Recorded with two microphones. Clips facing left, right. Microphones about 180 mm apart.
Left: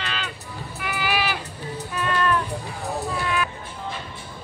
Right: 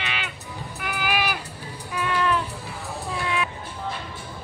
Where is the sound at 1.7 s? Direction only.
10° right (ahead or behind).